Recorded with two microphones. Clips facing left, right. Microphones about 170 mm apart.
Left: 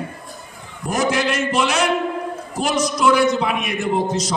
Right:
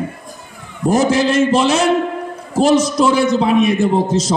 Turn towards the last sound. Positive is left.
turn(degrees=-25)  # may be behind; listen again after turning